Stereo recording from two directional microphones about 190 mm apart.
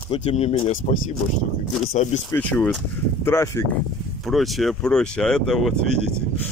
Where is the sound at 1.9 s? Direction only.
40° left (ahead or behind).